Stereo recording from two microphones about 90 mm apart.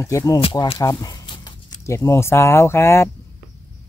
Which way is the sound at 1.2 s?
55° left (ahead or behind).